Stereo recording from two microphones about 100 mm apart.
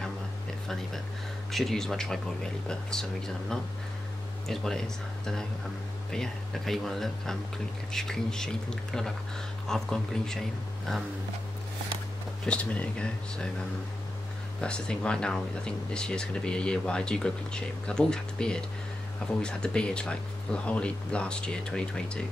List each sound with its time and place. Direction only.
1.5 s speech: centre (ahead or behind)
12.4 s speech: 15° left (ahead or behind)
14.6 s speech: 10° left (ahead or behind)